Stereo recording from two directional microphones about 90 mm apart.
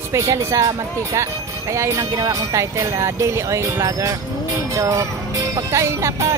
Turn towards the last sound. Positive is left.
turn(degrees=-35)  # may be behind; listen again after turning